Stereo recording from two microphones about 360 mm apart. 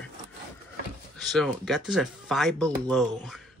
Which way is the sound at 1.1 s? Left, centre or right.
Centre.